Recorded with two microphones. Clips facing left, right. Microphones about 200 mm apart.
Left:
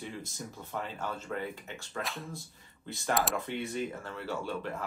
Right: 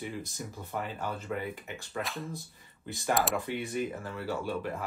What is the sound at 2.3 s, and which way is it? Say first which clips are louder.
Speech: right 2 dB; 15° right (ahead or behind).